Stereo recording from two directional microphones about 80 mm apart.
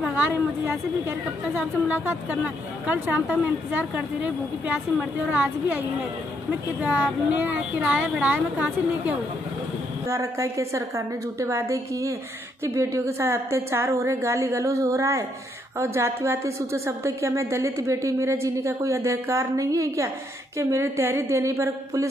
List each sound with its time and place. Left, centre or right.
0.1 s a woman's voice: right
10.0 s a woman's voice: right